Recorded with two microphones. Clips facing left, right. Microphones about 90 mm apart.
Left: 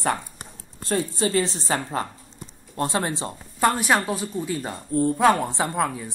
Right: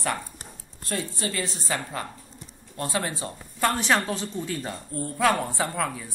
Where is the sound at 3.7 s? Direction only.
15° left (ahead or behind).